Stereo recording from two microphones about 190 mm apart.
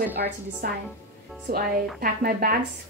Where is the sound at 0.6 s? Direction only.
50° right (ahead or behind).